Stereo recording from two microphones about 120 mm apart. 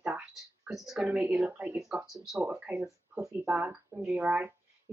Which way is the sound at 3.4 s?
10° right (ahead or behind).